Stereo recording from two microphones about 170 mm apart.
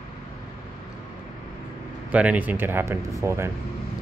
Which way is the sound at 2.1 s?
10° right (ahead or behind).